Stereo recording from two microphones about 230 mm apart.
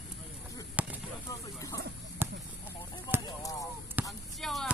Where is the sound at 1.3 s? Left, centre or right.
Centre.